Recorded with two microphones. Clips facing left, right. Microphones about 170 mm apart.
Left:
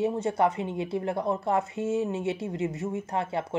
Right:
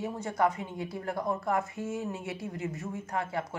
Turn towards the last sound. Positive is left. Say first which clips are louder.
# left 4 dB
turn(degrees=25)  # may be behind; listen again after turning